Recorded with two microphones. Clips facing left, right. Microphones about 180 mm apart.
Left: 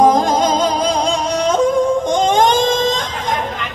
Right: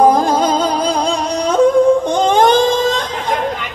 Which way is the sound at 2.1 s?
35° right (ahead or behind).